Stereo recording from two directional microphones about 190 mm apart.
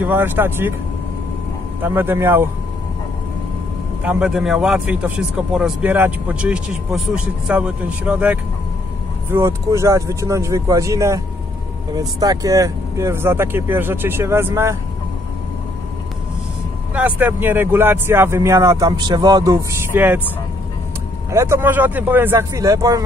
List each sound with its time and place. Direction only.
0.0 s speech: 10° right (ahead or behind)
1.8 s speech: 10° right (ahead or behind)
4.0 s a man's voice: 5° right (ahead or behind)
16.9 s speech: 10° right (ahead or behind)
21.3 s speech: 15° right (ahead or behind)